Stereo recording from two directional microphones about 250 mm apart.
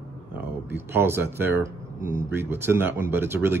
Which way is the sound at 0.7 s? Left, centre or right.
Centre.